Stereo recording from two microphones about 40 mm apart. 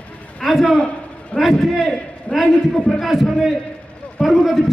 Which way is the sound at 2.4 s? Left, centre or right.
Centre.